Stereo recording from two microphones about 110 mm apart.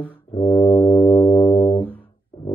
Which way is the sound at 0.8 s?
50° left (ahead or behind).